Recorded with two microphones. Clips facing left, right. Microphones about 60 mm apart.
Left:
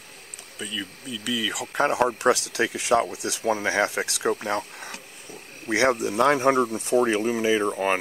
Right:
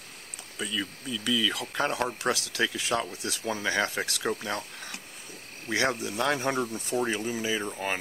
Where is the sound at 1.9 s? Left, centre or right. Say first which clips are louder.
Left 11 dB; left.